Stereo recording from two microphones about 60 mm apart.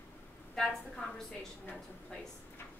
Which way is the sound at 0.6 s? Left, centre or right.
Centre.